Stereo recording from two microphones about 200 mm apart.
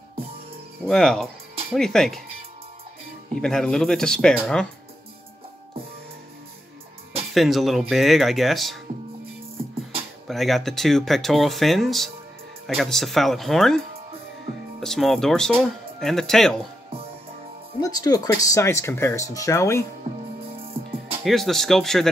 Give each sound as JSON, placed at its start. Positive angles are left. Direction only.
{"t": 0.8, "sound": "speech", "side_deg": 5}
{"t": 3.3, "sound": "speech", "side_deg": 0}
{"t": 7.3, "sound": "speech", "side_deg": 0}
{"t": 10.2, "sound": "speech", "side_deg": 0}
{"t": 17.7, "sound": "speech", "side_deg": 20}
{"t": 20.1, "sound": "music", "side_deg": -30}
{"t": 21.2, "sound": "speech", "side_deg": 0}